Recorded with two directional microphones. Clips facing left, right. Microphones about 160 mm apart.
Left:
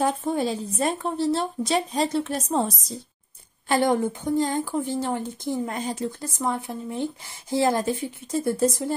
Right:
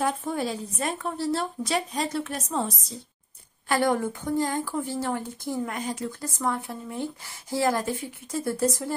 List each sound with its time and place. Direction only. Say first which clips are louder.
0.0 s a woman's voice: left 3 dB; 25° left (ahead or behind)
3.6 s a woman's voice: left 3 dB; 20° left (ahead or behind)